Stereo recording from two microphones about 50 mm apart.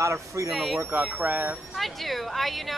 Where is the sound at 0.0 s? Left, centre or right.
Right.